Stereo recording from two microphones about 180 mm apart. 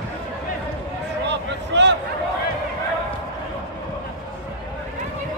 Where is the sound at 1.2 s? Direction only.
75° right (ahead or behind).